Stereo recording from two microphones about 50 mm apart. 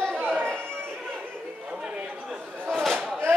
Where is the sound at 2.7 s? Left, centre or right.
Centre.